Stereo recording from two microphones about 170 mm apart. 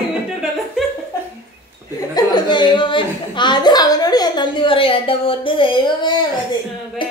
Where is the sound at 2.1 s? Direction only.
25° left (ahead or behind).